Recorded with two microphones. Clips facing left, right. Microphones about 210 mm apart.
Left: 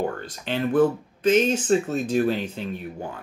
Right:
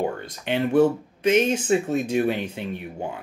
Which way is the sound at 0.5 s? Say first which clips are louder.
Right 1 dB; 10° right (ahead or behind).